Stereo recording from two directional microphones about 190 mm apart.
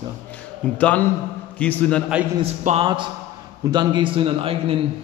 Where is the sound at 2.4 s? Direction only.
35° right (ahead or behind).